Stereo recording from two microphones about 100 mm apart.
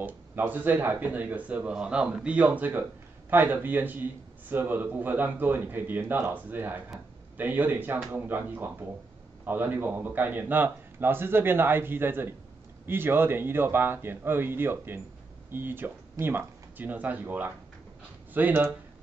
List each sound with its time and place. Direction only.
0.0 s a man's voice: 20° right (ahead or behind)